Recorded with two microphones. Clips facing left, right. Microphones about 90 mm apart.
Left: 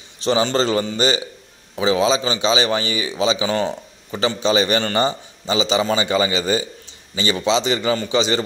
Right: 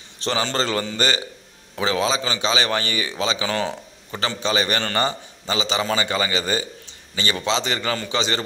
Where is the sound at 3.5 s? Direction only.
5° left (ahead or behind).